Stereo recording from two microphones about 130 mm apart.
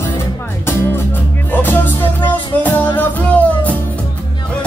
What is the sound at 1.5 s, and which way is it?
Music, 15° left (ahead or behind).